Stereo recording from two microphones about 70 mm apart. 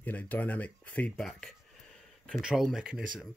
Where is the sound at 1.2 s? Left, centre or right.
Centre.